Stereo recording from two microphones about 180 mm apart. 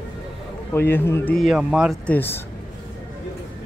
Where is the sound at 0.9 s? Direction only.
10° left (ahead or behind).